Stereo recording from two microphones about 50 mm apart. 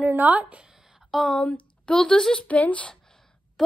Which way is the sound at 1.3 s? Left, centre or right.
Left.